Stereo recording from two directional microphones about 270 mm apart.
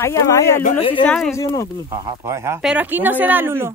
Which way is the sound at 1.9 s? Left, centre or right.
Centre.